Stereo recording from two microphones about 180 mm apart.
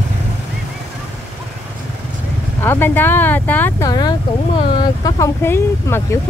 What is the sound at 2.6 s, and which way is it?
Speech, 10° left (ahead or behind).